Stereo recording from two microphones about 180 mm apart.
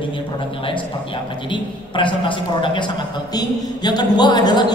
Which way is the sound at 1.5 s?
25° left (ahead or behind).